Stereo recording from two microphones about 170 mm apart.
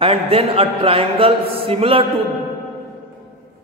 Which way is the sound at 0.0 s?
35° right (ahead or behind).